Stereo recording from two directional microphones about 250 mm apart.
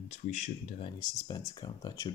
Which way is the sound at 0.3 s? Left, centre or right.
Centre.